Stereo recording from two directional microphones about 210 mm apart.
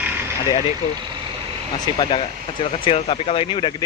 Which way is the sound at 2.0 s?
25° left (ahead or behind).